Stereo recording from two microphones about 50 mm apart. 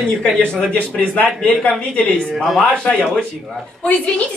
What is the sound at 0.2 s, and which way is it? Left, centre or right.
Speech, left.